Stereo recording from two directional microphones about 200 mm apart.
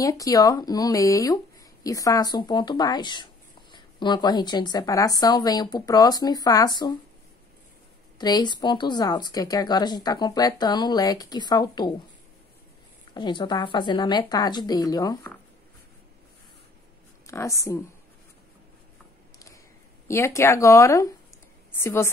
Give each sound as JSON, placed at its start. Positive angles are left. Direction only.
{"t": 0.0, "sound": "speech", "side_deg": 15}
{"t": 8.2, "sound": "speech", "side_deg": 20}
{"t": 13.1, "sound": "speech", "side_deg": 20}
{"t": 17.3, "sound": "speech", "side_deg": 15}
{"t": 20.1, "sound": "speech", "side_deg": 15}